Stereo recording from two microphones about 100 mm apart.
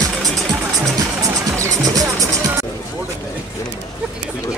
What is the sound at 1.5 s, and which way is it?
Music, 30° right (ahead or behind).